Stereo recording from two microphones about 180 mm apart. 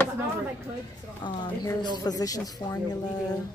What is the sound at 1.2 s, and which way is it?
Speech, 25° left (ahead or behind).